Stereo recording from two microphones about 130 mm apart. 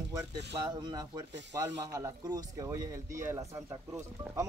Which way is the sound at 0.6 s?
30° right (ahead or behind).